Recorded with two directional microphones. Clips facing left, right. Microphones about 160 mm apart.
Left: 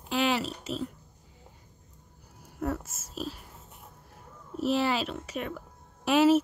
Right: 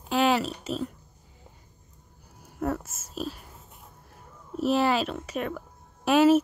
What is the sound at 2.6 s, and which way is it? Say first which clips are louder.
Speech: right 3 dB; 50° right (ahead or behind).